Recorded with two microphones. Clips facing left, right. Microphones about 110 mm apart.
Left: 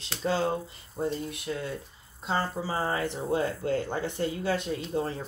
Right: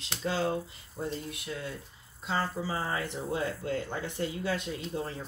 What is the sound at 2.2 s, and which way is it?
Speech, 35° left (ahead or behind).